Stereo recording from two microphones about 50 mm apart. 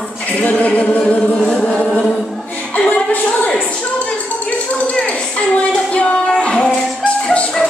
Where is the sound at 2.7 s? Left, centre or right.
Left.